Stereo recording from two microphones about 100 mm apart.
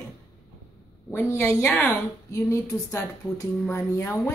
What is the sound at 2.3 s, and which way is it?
Speech, 30° left (ahead or behind).